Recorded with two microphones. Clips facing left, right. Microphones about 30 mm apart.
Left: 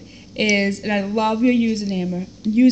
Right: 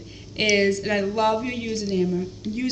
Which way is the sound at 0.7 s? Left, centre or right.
Left.